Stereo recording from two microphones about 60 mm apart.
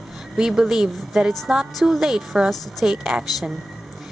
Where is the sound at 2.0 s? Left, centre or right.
Centre.